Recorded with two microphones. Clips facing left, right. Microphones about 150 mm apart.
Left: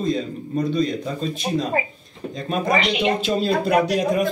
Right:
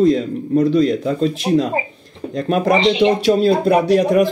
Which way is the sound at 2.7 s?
25° right (ahead or behind).